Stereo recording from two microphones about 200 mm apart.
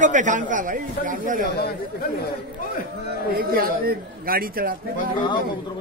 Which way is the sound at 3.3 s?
50° right (ahead or behind).